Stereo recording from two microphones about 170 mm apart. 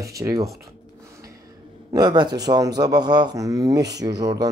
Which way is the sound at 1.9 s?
25° right (ahead or behind).